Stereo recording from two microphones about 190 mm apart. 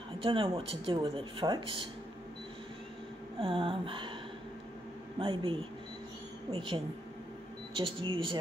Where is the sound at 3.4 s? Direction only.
25° right (ahead or behind).